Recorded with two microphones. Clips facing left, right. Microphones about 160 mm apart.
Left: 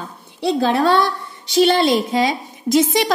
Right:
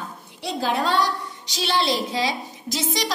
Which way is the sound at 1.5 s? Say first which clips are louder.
Left 9 dB; 55° left (ahead or behind).